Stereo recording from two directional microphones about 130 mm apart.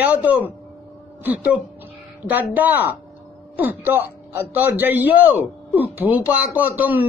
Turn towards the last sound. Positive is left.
turn(degrees=-15)  # may be behind; listen again after turning